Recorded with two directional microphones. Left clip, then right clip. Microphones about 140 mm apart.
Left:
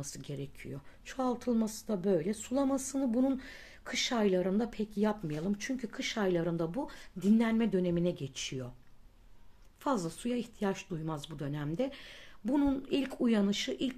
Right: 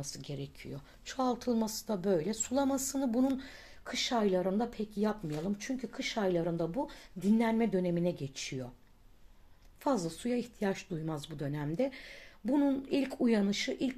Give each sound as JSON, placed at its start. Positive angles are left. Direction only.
{"t": 0.0, "sound": "speech", "side_deg": 20}
{"t": 9.8, "sound": "speech", "side_deg": 5}